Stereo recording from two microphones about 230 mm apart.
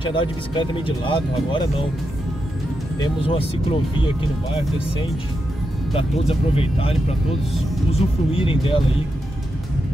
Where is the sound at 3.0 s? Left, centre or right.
Left.